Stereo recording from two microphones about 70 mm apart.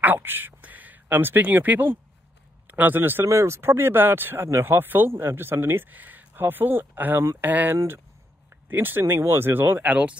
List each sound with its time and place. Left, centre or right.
0.0 s speech: right
3.3 s speech: right; by 10.1 s centre